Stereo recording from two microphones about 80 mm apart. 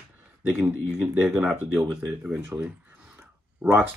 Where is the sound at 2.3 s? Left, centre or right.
Right.